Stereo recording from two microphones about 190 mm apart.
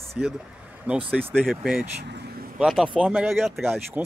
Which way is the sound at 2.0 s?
60° right (ahead or behind).